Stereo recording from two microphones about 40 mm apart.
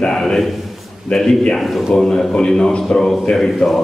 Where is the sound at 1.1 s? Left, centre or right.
Left.